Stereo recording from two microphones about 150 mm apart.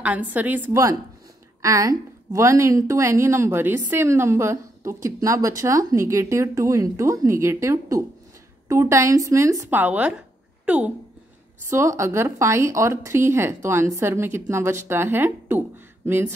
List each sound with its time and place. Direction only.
0.0 s a woman's voice: 10° right (ahead or behind)
9.8 s speech: 10° right (ahead or behind)
10.6 s a sound: 10° right (ahead or behind)
11.7 s speech: 20° right (ahead or behind)